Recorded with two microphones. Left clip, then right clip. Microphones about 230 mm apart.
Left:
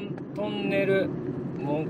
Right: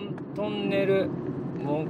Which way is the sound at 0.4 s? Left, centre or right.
Centre.